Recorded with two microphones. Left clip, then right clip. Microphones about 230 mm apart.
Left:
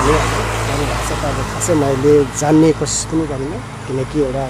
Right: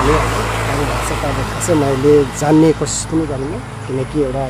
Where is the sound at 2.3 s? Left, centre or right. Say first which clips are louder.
Even; centre.